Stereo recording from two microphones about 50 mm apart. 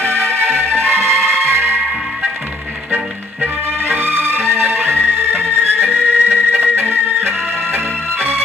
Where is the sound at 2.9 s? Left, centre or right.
Right.